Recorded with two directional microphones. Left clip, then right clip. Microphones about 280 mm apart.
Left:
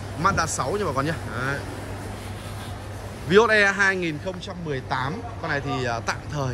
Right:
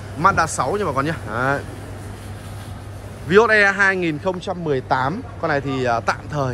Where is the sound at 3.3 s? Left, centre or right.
Centre.